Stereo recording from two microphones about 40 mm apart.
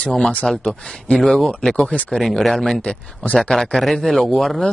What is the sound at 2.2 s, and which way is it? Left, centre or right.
Speech, centre.